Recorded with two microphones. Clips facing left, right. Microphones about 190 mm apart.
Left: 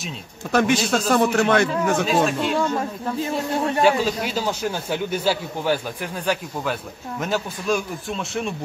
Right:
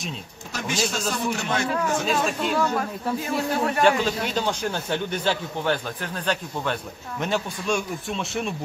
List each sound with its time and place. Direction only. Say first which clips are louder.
0.5 s a man's voice: left 9 dB; 60° left (ahead or behind)
2.0 s speech: left 4 dB; centre (ahead or behind)
2.5 s speech: left 1 dB; 25° left (ahead or behind)
4.0 s speech: left 1 dB; 5° left (ahead or behind)